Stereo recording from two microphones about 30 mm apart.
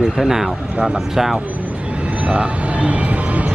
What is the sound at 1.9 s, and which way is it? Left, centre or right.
Vehicle, right.